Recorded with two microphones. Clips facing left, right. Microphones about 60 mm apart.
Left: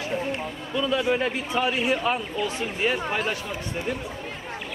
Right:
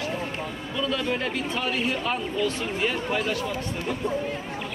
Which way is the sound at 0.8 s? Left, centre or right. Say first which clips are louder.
Left 4 dB; centre.